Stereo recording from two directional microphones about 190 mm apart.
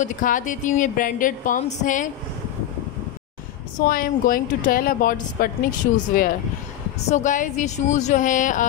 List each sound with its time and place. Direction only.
0.0 s speech: 45° left (ahead or behind)
3.7 s speech: 50° left (ahead or behind)